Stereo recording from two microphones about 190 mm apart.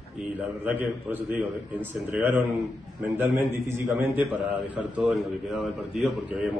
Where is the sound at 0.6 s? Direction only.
10° right (ahead or behind).